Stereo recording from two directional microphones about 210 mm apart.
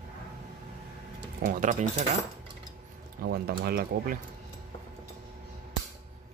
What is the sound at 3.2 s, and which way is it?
Speech, 50° right (ahead or behind).